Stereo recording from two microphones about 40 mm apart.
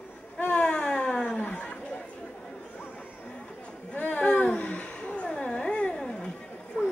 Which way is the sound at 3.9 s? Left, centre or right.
Left.